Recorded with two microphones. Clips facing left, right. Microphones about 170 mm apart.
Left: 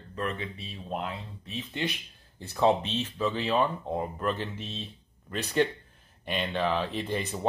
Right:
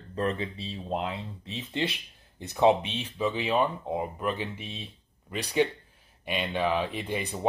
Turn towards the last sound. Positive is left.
turn(degrees=-10)  # may be behind; listen again after turning